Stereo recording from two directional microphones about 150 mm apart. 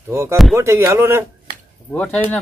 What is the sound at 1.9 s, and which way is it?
Speech, 5° left (ahead or behind).